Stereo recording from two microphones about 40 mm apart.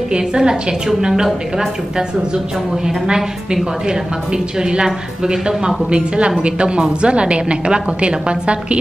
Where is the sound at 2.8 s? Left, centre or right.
Centre.